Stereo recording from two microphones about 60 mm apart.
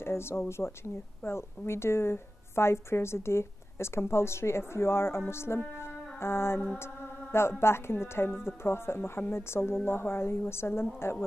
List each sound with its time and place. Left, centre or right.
0.0 s speech: left
5.8 s music: left
7.3 s speech: left